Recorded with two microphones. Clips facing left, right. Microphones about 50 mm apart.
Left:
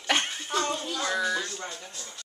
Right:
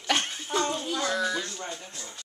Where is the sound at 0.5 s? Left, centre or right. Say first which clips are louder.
Right 1 dB; centre.